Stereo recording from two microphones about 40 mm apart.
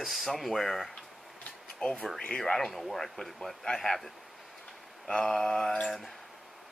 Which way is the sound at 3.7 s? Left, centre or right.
Centre.